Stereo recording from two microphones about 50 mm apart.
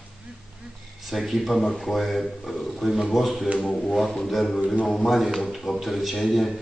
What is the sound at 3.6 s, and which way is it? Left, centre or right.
Didgeridoo, centre.